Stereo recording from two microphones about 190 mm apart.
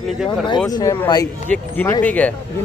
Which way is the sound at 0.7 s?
20° left (ahead or behind).